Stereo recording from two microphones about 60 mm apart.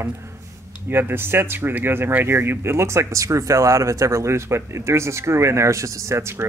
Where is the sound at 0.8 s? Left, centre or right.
Right.